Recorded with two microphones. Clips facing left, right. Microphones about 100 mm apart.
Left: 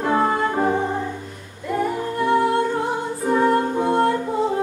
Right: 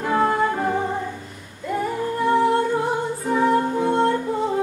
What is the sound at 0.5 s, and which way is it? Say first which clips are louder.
Music: left 2 dB; 20° left (ahead or behind).